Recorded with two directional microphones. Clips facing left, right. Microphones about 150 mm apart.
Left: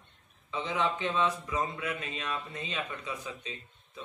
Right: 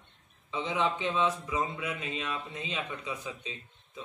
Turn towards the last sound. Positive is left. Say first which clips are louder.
# right 1 dB
turn(degrees=-15)  # may be behind; listen again after turning